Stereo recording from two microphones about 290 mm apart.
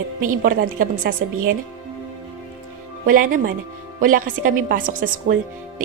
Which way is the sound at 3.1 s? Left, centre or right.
Right.